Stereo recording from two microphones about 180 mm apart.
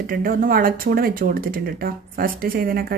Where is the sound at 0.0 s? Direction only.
50° right (ahead or behind).